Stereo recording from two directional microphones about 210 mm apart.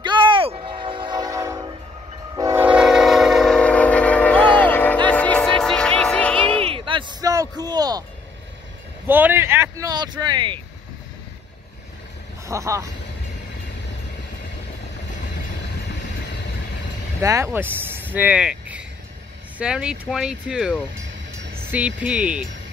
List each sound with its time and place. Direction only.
0.0 s train: 20° right (ahead or behind); by 6.6 s 5° left (ahead or behind)
6.6 s a sound: 25° right (ahead or behind)
9.0 s speech: 10° right (ahead or behind)
12.4 s speech: 15° right (ahead or behind)
17.2 s speech: 15° right (ahead or behind)
18.1 s vehicle: 5° right (ahead or behind)
19.6 s speech: 5° right (ahead or behind)